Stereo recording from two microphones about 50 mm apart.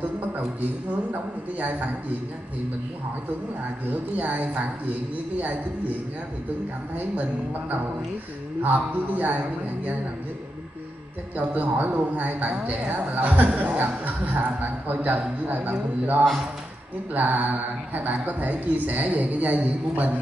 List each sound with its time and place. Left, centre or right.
3.9 s speech: right
8.6 s speech: right
11.3 s speech: right